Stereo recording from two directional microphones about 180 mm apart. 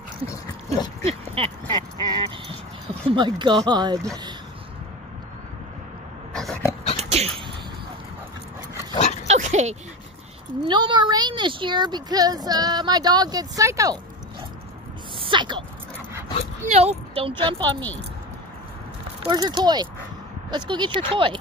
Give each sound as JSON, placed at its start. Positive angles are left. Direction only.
{"t": 0.3, "sound": "dog", "side_deg": 20}
{"t": 1.0, "sound": "a sound", "side_deg": -30}
{"t": 6.3, "sound": "dog", "side_deg": 5}
{"t": 7.0, "sound": "sneeze", "side_deg": -35}
{"t": 9.3, "sound": "dog", "side_deg": -40}
{"t": 10.6, "sound": "speech", "side_deg": -25}
{"t": 15.1, "sound": "a sound", "side_deg": -30}
{"t": 16.6, "sound": "speech", "side_deg": -35}
{"t": 17.4, "sound": "speech", "side_deg": -25}
{"t": 19.2, "sound": "speech", "side_deg": -25}